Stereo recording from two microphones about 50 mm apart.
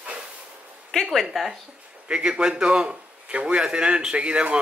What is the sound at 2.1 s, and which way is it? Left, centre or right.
A man's voice, centre.